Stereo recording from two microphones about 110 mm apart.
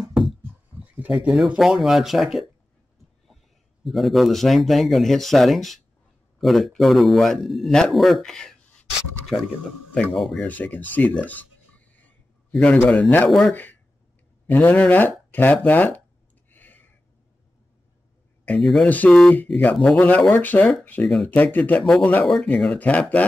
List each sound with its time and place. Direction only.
0.0 s a sound: centre (ahead or behind)
0.9 s a man's voice: 10° right (ahead or behind)
3.8 s a man's voice: centre (ahead or behind)
10.4 s speech: 15° left (ahead or behind)
11.2 s a sound: 15° left (ahead or behind)
13.3 s a man's voice: 5° left (ahead or behind)
14.5 s speech: 15° left (ahead or behind)
16.5 s a sound: 15° left (ahead or behind)
18.6 s a man's voice: centre (ahead or behind)
18.9 s speech: 15° left (ahead or behind)
21.1 s a man's voice: 5° left (ahead or behind)
21.4 s a man's voice: 15° left (ahead or behind)